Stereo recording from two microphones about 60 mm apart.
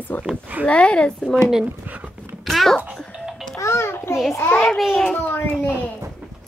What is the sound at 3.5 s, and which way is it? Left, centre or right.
Music, left.